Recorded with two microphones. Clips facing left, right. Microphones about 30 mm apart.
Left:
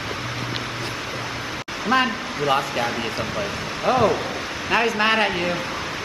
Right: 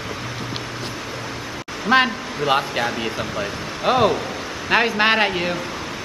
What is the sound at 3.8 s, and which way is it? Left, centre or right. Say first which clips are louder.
A man's voice: right 1 dB; right.